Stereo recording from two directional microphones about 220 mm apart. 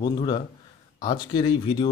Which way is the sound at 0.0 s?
20° left (ahead or behind).